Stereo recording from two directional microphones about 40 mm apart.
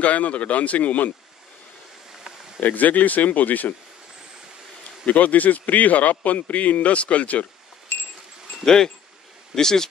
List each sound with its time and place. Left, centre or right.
0.0 s a man's voice: left
2.6 s speech: left
5.0 s a man's voice: left
8.6 s speech: centre